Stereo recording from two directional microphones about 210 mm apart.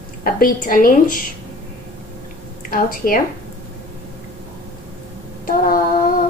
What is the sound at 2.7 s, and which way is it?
Speech, 40° left (ahead or behind).